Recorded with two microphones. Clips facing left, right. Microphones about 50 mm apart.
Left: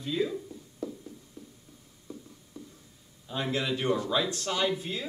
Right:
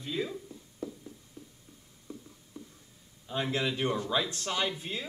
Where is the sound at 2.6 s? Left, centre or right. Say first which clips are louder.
Left 1 dB; right.